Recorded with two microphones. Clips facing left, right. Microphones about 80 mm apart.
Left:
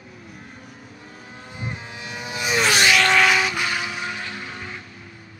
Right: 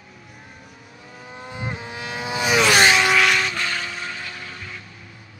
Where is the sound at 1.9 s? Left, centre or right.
Right.